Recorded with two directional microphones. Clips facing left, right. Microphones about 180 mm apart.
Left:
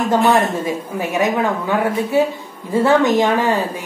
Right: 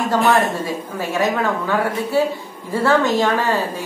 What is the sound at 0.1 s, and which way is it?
A woman's voice, 20° left (ahead or behind).